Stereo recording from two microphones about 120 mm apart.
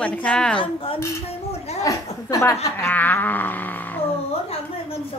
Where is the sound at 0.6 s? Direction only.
50° left (ahead or behind).